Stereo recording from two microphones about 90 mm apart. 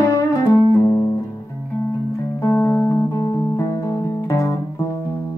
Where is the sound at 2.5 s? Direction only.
25° left (ahead or behind).